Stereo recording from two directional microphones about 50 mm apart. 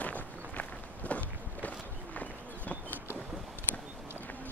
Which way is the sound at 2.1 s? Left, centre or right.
Left.